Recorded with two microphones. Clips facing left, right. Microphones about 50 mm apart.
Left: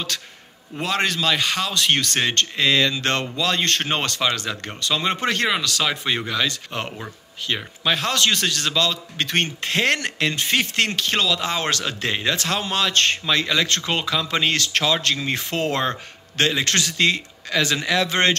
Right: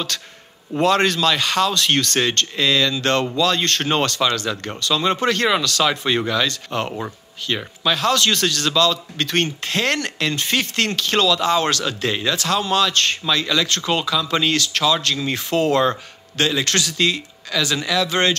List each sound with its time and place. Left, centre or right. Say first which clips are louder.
0.7 s a man's voice: right 6 dB; centre; by 18.3 s left